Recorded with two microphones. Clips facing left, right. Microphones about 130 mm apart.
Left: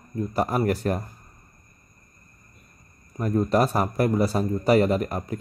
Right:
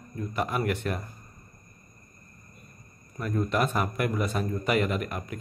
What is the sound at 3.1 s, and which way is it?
A man's voice, 35° left (ahead or behind).